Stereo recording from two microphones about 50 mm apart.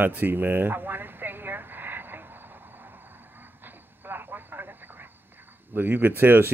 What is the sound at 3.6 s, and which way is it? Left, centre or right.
Vehicle, right.